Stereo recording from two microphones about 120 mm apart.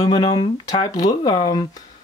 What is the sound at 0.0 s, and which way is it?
Speech, 35° left (ahead or behind).